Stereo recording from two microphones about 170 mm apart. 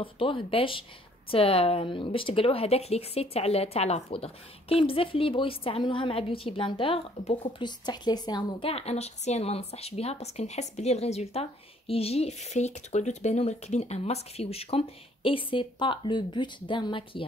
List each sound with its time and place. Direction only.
0.0 s speech: 30° left (ahead or behind)